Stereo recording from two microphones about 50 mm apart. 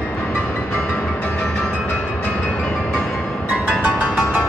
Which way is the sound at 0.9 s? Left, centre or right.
Left.